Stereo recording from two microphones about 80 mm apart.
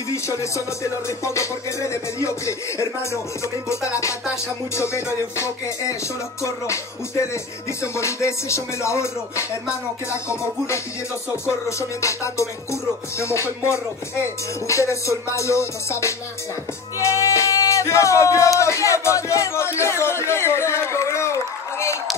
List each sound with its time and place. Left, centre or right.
0.1 s music: left
12.0 s music: left